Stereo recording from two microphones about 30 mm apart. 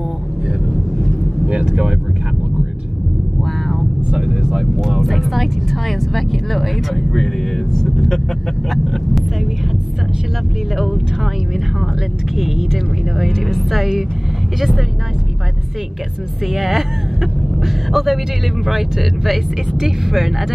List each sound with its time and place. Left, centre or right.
1.4 s vehicle: right
4.3 s vehicle: centre
4.7 s vehicle: centre
7.2 s vehicle: centre
12.4 s a sound: centre
13.6 s speech: centre
16.5 s speech: centre